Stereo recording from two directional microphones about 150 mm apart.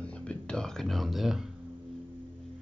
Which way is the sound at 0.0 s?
10° left (ahead or behind).